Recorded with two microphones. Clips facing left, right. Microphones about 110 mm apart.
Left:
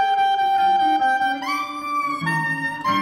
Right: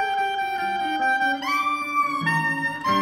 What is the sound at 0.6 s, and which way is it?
Music, 15° left (ahead or behind).